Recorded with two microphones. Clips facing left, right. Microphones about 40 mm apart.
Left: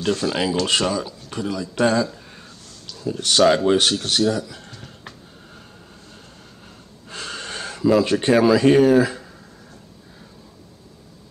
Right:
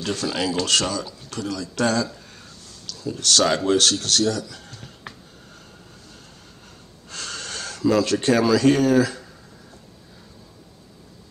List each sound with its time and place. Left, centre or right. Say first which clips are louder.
0.0 s speech: left 3 dB; centre
7.1 s gasp: left 2 dB; centre
8.0 s speech: left 3 dB; left